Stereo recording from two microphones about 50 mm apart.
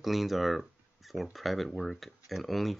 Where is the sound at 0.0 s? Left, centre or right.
Centre.